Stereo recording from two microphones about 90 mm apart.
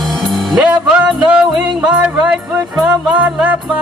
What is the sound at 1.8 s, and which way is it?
Music, 10° right (ahead or behind).